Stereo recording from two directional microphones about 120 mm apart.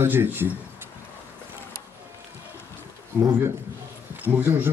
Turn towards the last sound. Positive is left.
turn(degrees=-15)  # may be behind; listen again after turning